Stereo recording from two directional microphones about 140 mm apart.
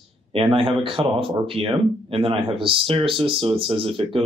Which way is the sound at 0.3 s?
40° right (ahead or behind).